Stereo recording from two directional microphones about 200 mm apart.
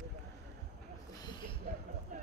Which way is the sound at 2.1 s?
40° right (ahead or behind).